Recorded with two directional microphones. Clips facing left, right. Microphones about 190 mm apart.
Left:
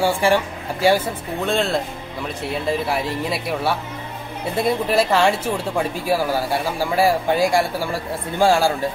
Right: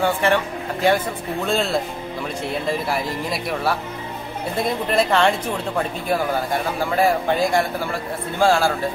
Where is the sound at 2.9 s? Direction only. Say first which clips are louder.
Left 1 dB; centre (ahead or behind).